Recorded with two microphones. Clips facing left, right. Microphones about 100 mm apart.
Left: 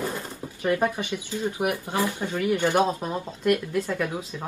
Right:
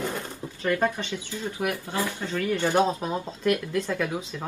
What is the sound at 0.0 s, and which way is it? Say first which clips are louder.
Speech: even; 15° left (ahead or behind).